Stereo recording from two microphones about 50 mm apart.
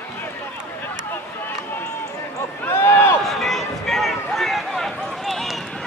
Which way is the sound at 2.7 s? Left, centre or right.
Left.